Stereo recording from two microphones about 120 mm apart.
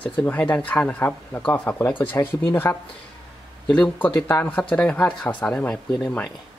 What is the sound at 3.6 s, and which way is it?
Speech, 10° left (ahead or behind).